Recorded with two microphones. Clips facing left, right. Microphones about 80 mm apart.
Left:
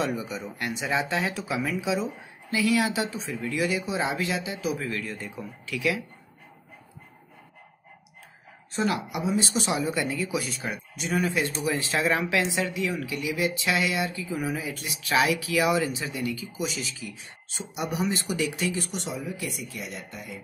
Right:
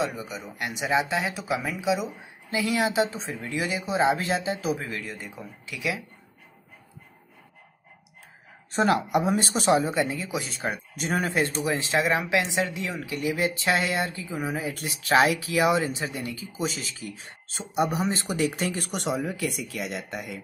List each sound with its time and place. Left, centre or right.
0.0 s speech: centre
0.6 s speech: centre
4.8 s speech: centre
8.7 s speech: right
11.6 s speech: right
14.8 s speech: right